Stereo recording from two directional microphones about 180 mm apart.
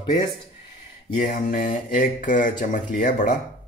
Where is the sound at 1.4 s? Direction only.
45° left (ahead or behind).